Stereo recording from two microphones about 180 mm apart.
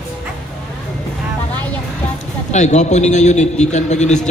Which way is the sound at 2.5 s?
40° left (ahead or behind).